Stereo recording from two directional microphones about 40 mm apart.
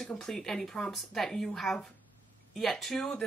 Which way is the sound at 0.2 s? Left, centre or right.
Centre.